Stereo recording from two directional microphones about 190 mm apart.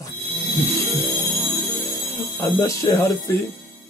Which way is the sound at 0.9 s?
Centre (ahead or behind).